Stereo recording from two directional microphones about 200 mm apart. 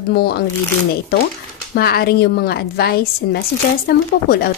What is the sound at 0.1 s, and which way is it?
Speech, 55° left (ahead or behind).